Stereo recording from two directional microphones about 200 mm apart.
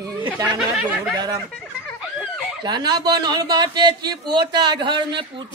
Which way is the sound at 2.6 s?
20° right (ahead or behind).